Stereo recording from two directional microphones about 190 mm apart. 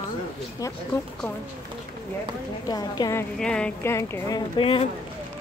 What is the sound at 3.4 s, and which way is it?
Speech, 5° left (ahead or behind).